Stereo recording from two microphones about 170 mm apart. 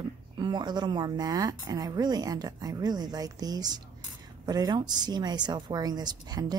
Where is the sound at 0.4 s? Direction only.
25° right (ahead or behind).